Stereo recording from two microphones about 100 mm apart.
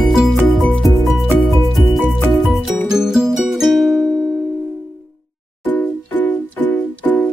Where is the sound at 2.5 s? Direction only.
5° right (ahead or behind).